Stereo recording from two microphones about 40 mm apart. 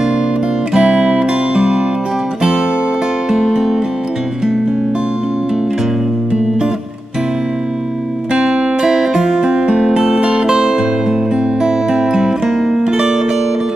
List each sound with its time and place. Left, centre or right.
0.7 s music: right
3.3 s music: centre
8.4 s music: centre
10.5 s music: centre